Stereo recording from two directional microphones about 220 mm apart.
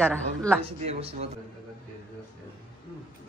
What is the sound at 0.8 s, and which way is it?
Speech, 30° right (ahead or behind).